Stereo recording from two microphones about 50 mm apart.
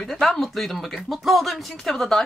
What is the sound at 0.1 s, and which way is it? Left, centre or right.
Speech, centre.